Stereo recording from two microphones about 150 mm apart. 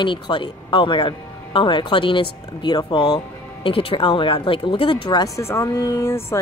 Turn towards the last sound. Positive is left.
turn(degrees=20)  # may be behind; listen again after turning